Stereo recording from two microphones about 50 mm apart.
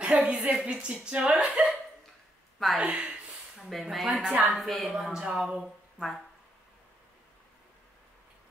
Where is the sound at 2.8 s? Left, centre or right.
Centre.